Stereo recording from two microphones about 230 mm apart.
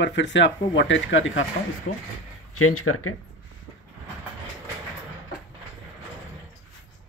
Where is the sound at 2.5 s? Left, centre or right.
Left.